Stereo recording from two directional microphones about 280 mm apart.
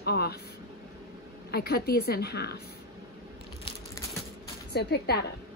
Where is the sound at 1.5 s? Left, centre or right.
Left.